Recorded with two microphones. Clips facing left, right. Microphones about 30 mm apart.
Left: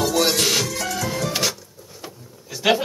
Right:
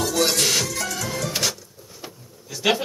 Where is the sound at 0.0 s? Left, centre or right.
Centre.